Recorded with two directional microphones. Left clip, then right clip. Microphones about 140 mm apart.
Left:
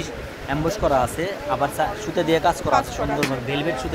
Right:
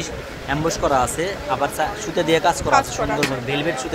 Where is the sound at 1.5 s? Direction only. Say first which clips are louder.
Even; 10° left (ahead or behind).